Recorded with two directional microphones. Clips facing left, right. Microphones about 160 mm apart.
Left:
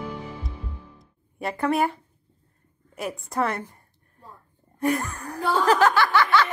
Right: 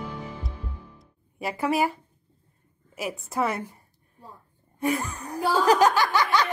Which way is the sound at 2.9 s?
5° right (ahead or behind).